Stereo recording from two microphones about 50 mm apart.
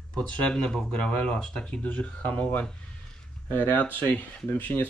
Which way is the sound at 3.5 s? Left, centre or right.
Left.